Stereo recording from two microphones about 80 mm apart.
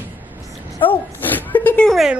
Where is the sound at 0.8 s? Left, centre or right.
Left.